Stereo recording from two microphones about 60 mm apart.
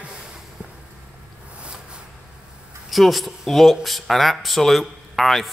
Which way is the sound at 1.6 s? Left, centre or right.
Centre.